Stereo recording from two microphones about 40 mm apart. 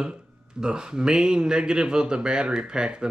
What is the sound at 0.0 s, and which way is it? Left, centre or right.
Speech, centre.